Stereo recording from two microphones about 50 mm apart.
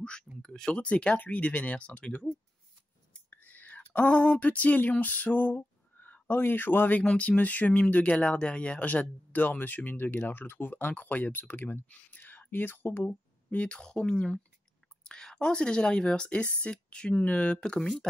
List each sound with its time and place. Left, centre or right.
0.4 s speech: centre
3.3 s whispering: left
4.0 s a sound: left
6.4 s speech: left
13.6 s speech: left
13.8 s speech: centre
17.7 s speech: centre